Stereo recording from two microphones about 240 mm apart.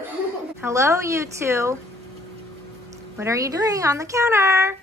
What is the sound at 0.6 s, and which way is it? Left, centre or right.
Speech, centre.